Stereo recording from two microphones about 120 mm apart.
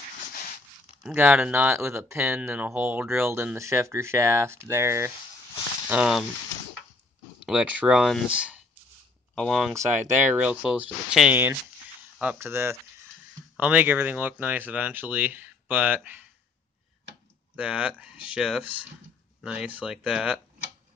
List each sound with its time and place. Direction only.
1.1 s speech: 15° right (ahead or behind)
5.9 s speech: 5° right (ahead or behind)
7.4 s speech: 10° right (ahead or behind)
9.3 s speech: 5° left (ahead or behind)
10.2 s speech: 10° right (ahead or behind)
17.6 s speech: 10° right (ahead or behind)